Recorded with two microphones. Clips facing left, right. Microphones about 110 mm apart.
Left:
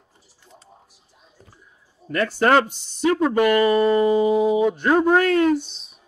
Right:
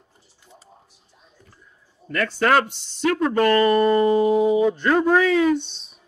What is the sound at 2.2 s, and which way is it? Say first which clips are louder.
Speech: left 2 dB; 15° left (ahead or behind).